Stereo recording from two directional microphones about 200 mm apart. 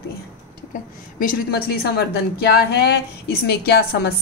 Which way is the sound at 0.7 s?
45° left (ahead or behind).